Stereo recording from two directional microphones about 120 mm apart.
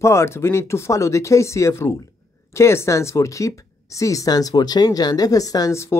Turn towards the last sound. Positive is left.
turn(degrees=25)  # may be behind; listen again after turning